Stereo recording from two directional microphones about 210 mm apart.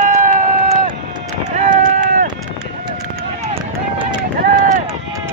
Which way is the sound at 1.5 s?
35° right (ahead or behind).